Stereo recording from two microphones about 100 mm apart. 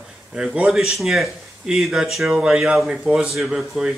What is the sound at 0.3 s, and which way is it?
Speech, 10° right (ahead or behind).